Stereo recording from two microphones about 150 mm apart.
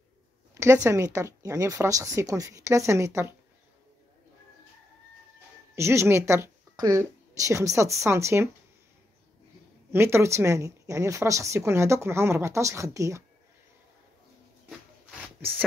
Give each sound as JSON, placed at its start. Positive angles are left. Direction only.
{"t": 0.6, "sound": "speech", "side_deg": -20}
{"t": 5.8, "sound": "speech", "side_deg": -15}
{"t": 9.9, "sound": "speech", "side_deg": -15}